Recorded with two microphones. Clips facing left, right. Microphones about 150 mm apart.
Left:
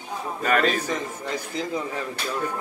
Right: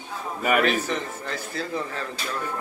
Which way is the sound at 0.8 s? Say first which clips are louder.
Left 1 dB; 15° left (ahead or behind).